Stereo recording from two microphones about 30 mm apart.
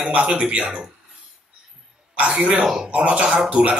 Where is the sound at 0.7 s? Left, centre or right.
Right.